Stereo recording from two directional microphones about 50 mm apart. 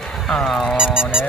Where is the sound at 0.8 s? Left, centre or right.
Centre.